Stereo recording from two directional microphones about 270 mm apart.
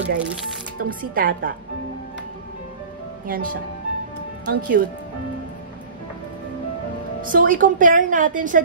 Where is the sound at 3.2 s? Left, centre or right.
Right.